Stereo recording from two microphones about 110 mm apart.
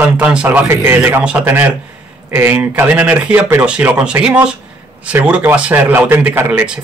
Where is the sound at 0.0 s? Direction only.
10° right (ahead or behind).